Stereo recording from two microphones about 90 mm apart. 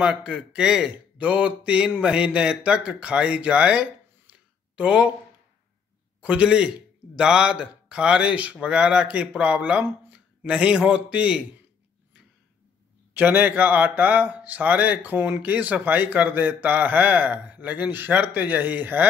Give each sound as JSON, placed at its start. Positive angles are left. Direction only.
{"t": 0.0, "sound": "a man's voice", "side_deg": -10}
{"t": 6.2, "sound": "a man's voice", "side_deg": -10}
{"t": 13.1, "sound": "speech", "side_deg": -20}